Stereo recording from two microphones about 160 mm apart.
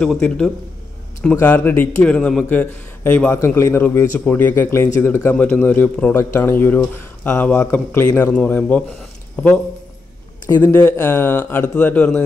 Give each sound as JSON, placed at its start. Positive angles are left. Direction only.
{"t": 0.0, "sound": "a man's voice", "side_deg": 5}
{"t": 10.5, "sound": "a man's voice", "side_deg": 15}